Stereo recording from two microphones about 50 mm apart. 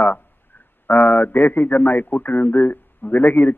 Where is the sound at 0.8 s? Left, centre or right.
Left.